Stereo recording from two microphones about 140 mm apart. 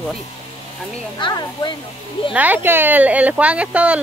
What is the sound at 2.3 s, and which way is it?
Speech, 10° right (ahead or behind).